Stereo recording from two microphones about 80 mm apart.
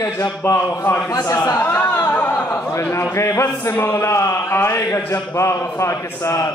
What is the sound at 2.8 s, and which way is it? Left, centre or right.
A man's voice, left.